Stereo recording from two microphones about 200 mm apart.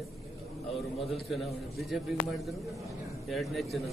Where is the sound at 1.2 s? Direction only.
Centre (ahead or behind).